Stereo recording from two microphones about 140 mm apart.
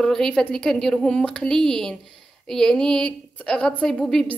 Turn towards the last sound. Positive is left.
turn(degrees=5)  # may be behind; listen again after turning